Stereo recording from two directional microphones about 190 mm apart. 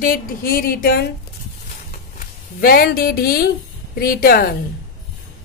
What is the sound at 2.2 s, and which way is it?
Speech, 55° left (ahead or behind).